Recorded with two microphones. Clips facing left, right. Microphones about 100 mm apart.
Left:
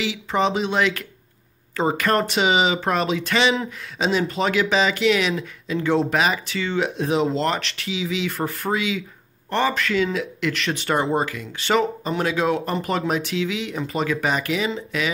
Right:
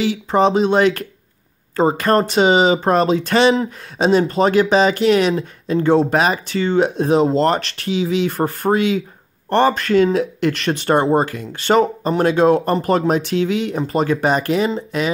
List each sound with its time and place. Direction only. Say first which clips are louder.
0.0 s speech: right 6 dB; 40° right (ahead or behind)